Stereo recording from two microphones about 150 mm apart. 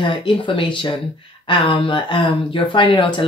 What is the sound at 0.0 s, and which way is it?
Speech, 35° left (ahead or behind).